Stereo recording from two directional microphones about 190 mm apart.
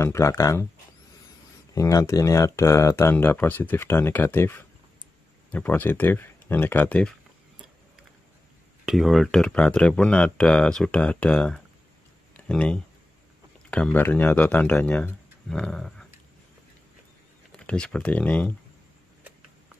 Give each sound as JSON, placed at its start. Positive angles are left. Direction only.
{"t": 0.0, "sound": "speech", "side_deg": 15}
{"t": 1.7, "sound": "speech", "side_deg": 15}
{"t": 8.8, "sound": "speech", "side_deg": 0}
{"t": 17.5, "sound": "speech", "side_deg": 5}